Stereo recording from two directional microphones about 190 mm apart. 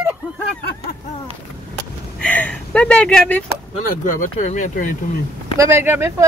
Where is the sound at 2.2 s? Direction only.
5° left (ahead or behind).